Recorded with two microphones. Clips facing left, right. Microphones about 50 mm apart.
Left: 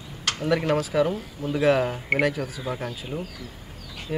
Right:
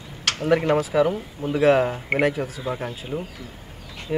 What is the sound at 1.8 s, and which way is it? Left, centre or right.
Speech, centre.